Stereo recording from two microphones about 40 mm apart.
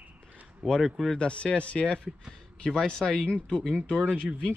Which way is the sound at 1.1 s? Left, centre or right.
Left.